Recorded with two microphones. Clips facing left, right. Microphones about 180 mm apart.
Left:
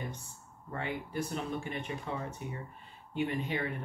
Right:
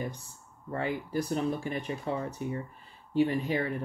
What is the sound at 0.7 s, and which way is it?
Speech, 35° right (ahead or behind).